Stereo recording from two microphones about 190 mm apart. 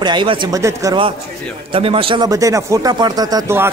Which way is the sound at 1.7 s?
30° right (ahead or behind).